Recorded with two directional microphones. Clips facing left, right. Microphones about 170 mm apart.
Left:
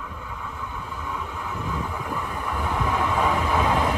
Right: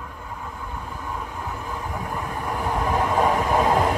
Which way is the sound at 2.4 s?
40° right (ahead or behind).